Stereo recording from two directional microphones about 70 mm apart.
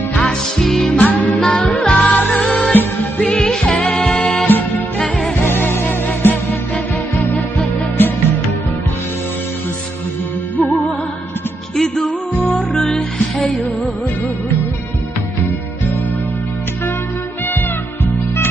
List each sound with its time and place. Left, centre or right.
0.2 s music: centre
0.9 s music: left
1.4 s music: centre
1.7 s music: left
2.4 s music: centre
4.5 s music: left
4.9 s music: centre
5.4 s music: left
8.0 s music: left
12.0 s music: centre